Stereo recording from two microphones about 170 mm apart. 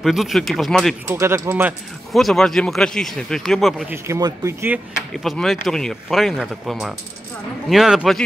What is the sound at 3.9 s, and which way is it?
Speech, 20° right (ahead or behind).